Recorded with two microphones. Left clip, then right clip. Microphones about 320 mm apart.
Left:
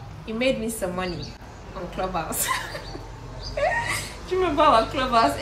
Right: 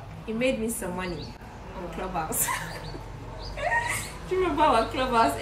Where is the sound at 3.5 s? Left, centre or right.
Centre.